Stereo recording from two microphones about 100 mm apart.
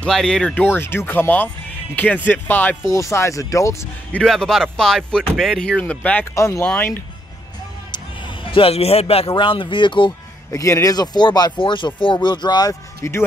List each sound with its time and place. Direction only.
0.0 s speech: 5° left (ahead or behind)
0.6 s speech: 20° left (ahead or behind)
2.9 s speech: 30° left (ahead or behind)
4.1 s speech: 10° left (ahead or behind)
6.3 s speech: 30° left (ahead or behind)
6.6 s speech: 20° left (ahead or behind)
7.9 s a sound: 55° left (ahead or behind); by 9.3 s 80° left
9.3 s speech: 55° left (ahead or behind)
10.5 s speech: 35° left (ahead or behind)
13.0 s speech: 30° left (ahead or behind)